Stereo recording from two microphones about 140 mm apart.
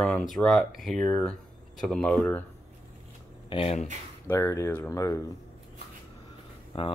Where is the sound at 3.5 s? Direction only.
45° left (ahead or behind).